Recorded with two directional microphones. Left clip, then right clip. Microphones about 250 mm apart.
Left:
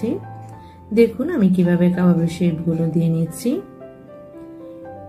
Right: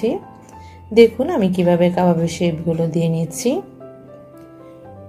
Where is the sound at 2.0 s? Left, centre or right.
Right.